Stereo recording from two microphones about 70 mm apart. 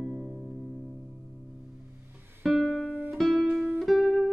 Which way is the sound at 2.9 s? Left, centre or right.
Right.